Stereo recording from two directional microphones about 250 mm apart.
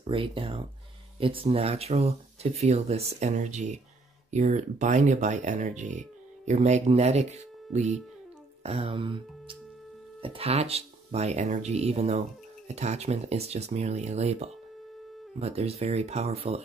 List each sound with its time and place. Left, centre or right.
0.0 s speech: right